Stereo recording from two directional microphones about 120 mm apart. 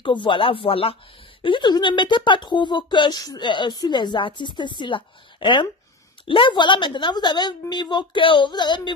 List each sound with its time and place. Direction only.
0.0 s speech: 40° left (ahead or behind)